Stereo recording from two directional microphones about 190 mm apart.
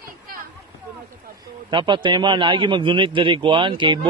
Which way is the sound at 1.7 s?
25° right (ahead or behind).